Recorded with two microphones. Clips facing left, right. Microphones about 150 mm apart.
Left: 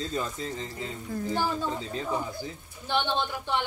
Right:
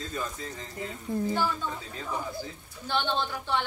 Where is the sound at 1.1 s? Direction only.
25° right (ahead or behind).